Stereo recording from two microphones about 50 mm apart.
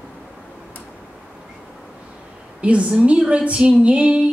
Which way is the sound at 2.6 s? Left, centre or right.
Right.